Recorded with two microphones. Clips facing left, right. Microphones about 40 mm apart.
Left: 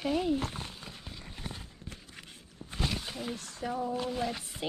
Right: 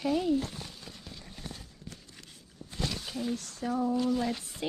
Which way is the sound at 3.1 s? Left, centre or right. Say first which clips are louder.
Right 4 dB; centre.